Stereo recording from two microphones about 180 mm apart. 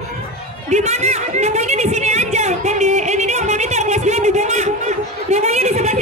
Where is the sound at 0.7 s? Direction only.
40° right (ahead or behind).